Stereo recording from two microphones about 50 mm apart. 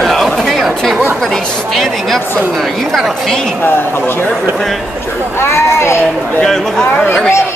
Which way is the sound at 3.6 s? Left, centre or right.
Left.